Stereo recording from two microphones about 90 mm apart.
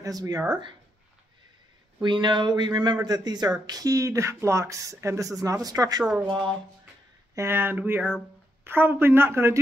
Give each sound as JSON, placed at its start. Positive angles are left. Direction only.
{"t": 0.0, "sound": "speech", "side_deg": -45}
{"t": 2.0, "sound": "speech", "side_deg": -60}
{"t": 6.2, "sound": "speech", "side_deg": -60}
{"t": 7.3, "sound": "speech", "side_deg": -25}